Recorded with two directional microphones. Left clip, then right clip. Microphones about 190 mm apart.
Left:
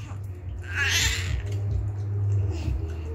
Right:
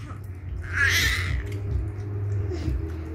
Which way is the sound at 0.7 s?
15° left (ahead or behind).